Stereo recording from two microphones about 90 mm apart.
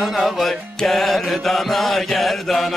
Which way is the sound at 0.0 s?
Centre (ahead or behind).